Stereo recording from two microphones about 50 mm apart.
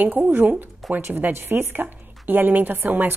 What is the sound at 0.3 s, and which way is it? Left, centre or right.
A woman's voice, right.